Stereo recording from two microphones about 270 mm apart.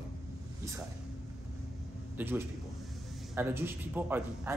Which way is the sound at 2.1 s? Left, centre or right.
Centre.